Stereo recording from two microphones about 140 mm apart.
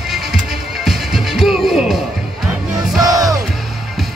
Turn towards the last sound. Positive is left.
turn(degrees=-25)  # may be behind; listen again after turning